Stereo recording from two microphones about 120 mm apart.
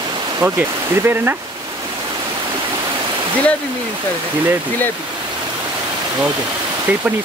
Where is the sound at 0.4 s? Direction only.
15° right (ahead or behind).